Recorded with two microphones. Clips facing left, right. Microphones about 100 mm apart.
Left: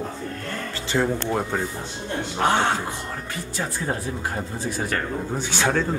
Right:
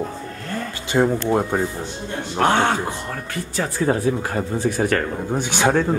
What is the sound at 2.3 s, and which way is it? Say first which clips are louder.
Speech: right 4 dB; 65° right (ahead or behind).